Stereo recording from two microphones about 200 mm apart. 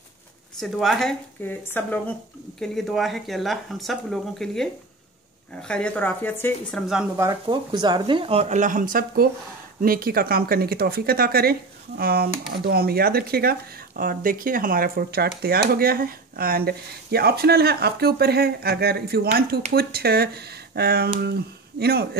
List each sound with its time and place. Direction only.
0.6 s speech: centre (ahead or behind)
7.2 s speech: 20° right (ahead or behind); by 22.2 s 50° right (ahead or behind)